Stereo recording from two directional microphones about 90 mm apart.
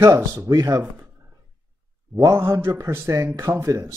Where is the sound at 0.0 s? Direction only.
25° right (ahead or behind).